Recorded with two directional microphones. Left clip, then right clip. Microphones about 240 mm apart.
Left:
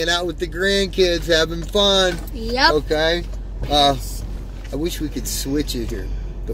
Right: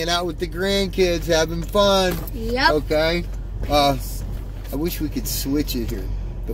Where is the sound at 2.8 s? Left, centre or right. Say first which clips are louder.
Left 1 dB; centre.